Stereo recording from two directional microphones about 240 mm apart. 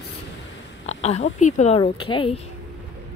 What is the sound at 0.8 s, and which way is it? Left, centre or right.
Speech, left.